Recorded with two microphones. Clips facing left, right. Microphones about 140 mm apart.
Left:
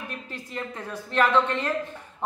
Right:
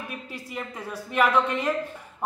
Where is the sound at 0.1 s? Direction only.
10° right (ahead or behind).